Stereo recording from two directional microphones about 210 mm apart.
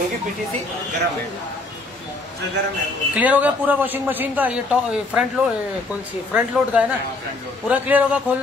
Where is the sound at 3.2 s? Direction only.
5° right (ahead or behind).